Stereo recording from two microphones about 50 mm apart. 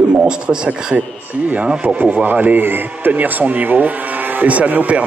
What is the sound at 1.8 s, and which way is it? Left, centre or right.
A man's voice, right.